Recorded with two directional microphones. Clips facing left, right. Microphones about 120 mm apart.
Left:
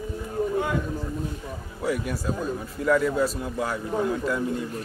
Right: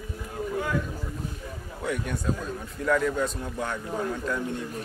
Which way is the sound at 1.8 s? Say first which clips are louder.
Left 2 dB; 5° left (ahead or behind).